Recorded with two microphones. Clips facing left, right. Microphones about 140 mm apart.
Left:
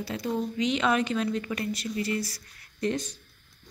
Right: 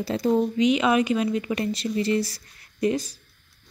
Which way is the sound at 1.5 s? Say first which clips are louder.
Right 5 dB; 25° right (ahead or behind).